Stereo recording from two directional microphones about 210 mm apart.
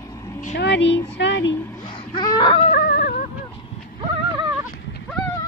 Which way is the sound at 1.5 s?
10° left (ahead or behind).